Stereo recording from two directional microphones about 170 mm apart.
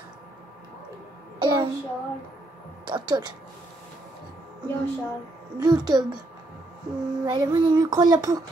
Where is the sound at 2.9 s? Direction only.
25° right (ahead or behind).